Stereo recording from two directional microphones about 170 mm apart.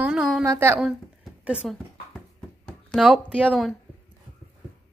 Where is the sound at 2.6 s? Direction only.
5° left (ahead or behind).